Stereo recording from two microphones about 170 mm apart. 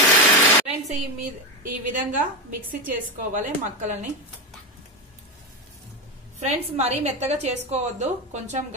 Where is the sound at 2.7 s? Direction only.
50° right (ahead or behind).